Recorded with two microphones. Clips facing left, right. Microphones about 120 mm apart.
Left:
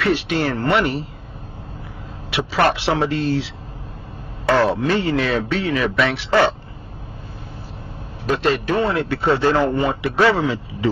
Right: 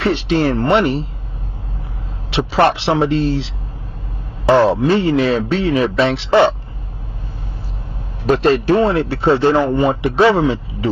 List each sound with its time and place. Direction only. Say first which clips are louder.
0.0 s speech: right 4 dB; 30° right (ahead or behind)
2.3 s speech: right 4 dB; 25° right (ahead or behind)
8.3 s speech: right 6 dB; 35° right (ahead or behind)